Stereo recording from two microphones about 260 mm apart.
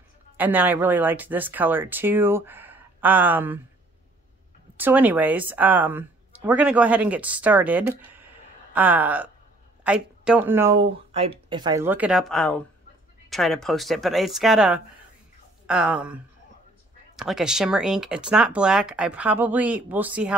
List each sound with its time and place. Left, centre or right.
0.4 s speech: centre
4.7 s speech: centre
11.1 s speech: right; by 16.2 s centre
17.2 s speech: centre